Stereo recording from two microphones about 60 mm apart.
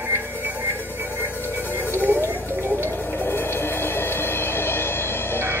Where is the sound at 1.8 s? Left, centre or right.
Left.